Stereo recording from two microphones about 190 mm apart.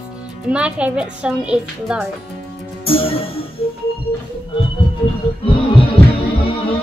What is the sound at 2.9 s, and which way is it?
Music, 30° left (ahead or behind).